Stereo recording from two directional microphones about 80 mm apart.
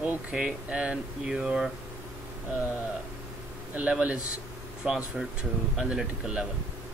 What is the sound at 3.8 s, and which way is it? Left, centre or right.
Speech, centre.